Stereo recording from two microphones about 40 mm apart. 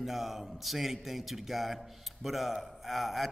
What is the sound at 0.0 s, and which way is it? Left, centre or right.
A man's voice, centre.